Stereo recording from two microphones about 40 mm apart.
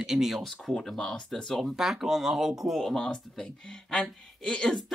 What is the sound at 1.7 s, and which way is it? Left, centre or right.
Speech, centre.